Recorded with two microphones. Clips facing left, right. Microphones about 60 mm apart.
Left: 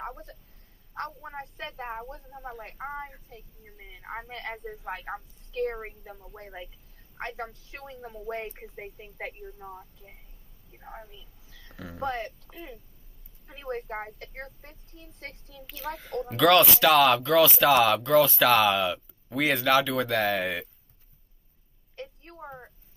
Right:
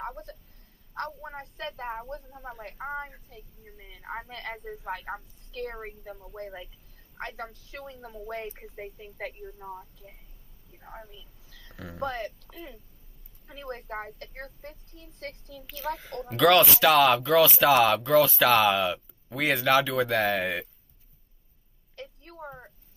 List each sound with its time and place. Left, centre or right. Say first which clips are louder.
0.0 s speech: right 1 dB; centre
3.8 s a woman's voice: left 2 dB; centre
4.3 s speech: left 1 dB; centre
6.4 s a woman's voice: right 2 dB; centre
11.1 s a sound: even; centre
11.7 s a woman's voice: left 1 dB; centre
22.2 s a woman's voice: even; centre